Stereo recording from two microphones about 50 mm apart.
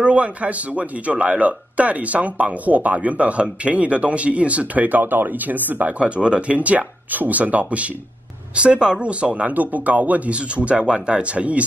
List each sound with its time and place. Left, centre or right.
0.0 s speech: right